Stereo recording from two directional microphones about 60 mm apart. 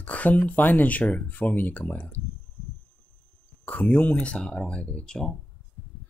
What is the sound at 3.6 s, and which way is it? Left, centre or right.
Speech, left.